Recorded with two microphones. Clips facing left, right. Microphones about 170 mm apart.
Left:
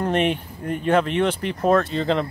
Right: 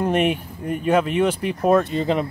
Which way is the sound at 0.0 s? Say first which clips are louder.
Right 1 dB; 10° right (ahead or behind).